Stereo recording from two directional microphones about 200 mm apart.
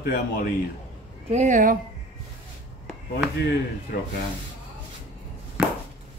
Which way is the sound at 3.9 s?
50° left (ahead or behind).